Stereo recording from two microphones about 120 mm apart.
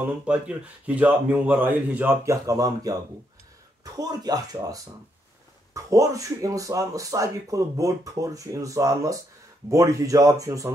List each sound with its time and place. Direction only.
0.3 s speech: 10° right (ahead or behind)
2.2 s speech: 30° right (ahead or behind)
5.8 s speech: 25° right (ahead or behind)